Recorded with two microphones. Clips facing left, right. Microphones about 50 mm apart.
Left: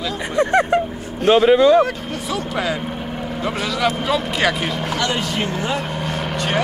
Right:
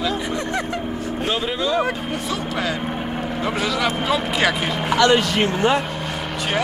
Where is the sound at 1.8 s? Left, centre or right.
Centre.